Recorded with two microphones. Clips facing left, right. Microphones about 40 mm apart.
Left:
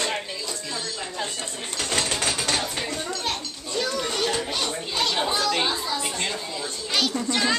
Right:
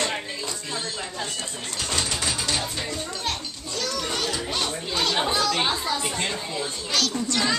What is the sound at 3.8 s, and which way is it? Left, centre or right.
Children playing, centre.